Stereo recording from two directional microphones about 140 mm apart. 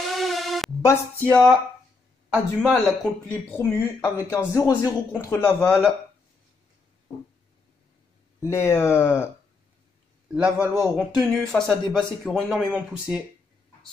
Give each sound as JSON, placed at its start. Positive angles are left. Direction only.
{"t": 0.0, "sound": "music", "side_deg": 0}
{"t": 1.3, "sound": "speech", "side_deg": 0}
{"t": 3.4, "sound": "speech", "side_deg": 15}
{"t": 8.5, "sound": "speech", "side_deg": 20}
{"t": 10.3, "sound": "a man's voice", "side_deg": -5}
{"t": 11.1, "sound": "speech", "side_deg": 5}